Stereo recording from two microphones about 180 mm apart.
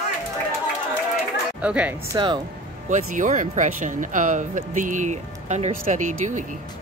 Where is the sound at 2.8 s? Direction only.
45° right (ahead or behind).